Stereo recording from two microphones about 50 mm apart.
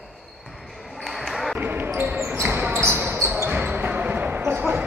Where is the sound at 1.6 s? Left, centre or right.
Right.